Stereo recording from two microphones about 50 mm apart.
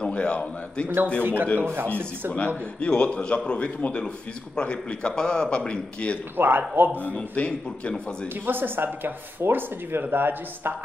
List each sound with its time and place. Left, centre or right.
0.0 s a man's voice: left
0.8 s speech: right
2.3 s a man's voice: left
6.3 s speech: right
7.2 s a man's voice: left
8.5 s speech: right